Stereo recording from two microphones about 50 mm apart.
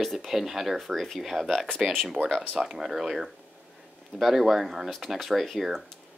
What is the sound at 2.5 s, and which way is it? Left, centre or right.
Speech, centre.